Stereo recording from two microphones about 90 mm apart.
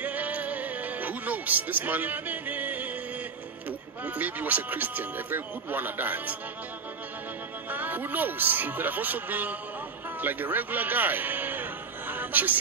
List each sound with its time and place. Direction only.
0.0 s music: 15° right (ahead or behind)
4.0 s speech: 15° right (ahead or behind)
7.7 s a man's voice: 20° right (ahead or behind)